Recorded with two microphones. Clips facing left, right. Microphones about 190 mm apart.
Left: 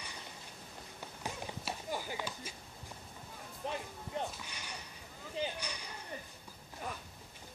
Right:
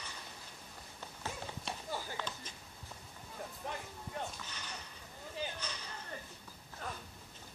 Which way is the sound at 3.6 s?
20° left (ahead or behind).